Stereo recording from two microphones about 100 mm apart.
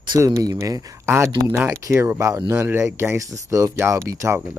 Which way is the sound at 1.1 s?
25° right (ahead or behind).